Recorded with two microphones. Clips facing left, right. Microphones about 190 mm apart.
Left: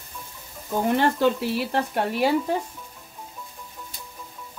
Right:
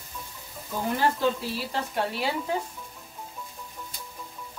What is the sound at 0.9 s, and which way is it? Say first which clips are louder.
Speech: left 3 dB; 65° left (ahead or behind).